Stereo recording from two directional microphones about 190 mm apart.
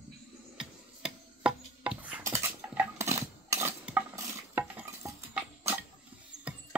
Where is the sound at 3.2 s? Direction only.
15° right (ahead or behind).